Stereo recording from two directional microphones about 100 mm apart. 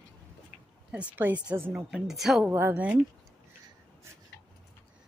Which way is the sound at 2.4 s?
20° right (ahead or behind).